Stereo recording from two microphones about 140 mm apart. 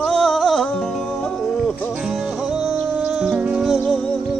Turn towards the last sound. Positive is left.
turn(degrees=0)  # may be behind; listen again after turning